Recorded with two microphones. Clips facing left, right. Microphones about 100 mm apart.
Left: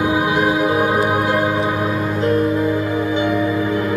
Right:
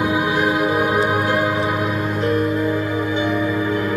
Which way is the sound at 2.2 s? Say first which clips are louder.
Left 3 dB; 30° left (ahead or behind).